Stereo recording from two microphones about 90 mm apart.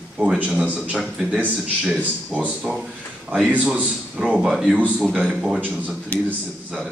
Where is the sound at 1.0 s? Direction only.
5° right (ahead or behind).